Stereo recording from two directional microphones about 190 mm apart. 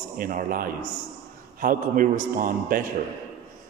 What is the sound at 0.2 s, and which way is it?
A man's voice, 45° right (ahead or behind).